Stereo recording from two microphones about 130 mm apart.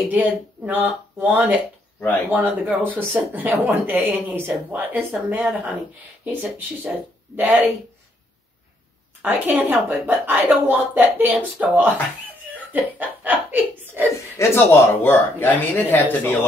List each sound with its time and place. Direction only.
0.1 s a woman's voice: 15° right (ahead or behind)
2.3 s a woman's voice: 15° right (ahead or behind)
9.2 s a woman's voice: 10° right (ahead or behind)
14.4 s speech: 15° left (ahead or behind)